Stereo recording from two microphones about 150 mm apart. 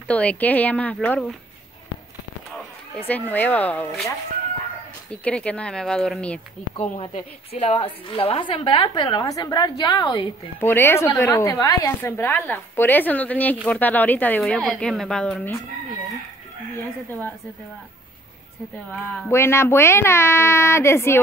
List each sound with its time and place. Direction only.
0.1 s a woman's voice: 10° left (ahead or behind)
3.1 s a woman's voice: 10° left (ahead or behind)
5.1 s a woman's voice: 10° left (ahead or behind)
7.5 s a woman's voice: 45° left (ahead or behind); by 10.2 s 30° left (ahead or behind)
10.6 s a woman's voice: 15° left (ahead or behind)
19.3 s a woman's voice: 15° left (ahead or behind)